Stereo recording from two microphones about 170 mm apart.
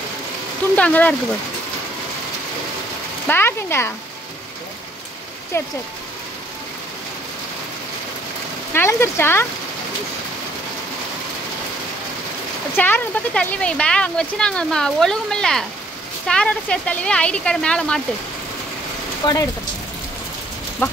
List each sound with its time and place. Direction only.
0.7 s speech: 10° left (ahead or behind)
3.3 s speech: 15° left (ahead or behind)
5.5 s speech: 15° left (ahead or behind)
8.7 s speech: 15° left (ahead or behind)
12.7 s speech: 10° left (ahead or behind)
19.2 s speech: 25° left (ahead or behind)
20.8 s speech: 15° left (ahead or behind)